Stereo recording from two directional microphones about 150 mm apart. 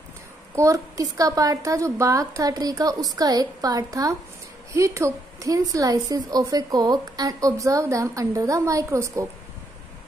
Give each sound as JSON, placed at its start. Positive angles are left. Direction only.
{"t": 0.6, "sound": "a woman's voice", "side_deg": -20}